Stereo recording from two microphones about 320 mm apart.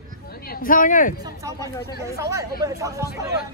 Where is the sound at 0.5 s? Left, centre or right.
Left.